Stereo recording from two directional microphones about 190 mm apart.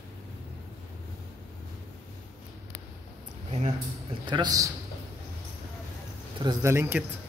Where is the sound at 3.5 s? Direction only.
35° right (ahead or behind).